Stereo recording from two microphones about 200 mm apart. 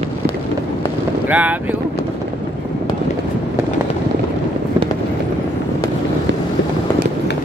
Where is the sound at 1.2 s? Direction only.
5° right (ahead or behind).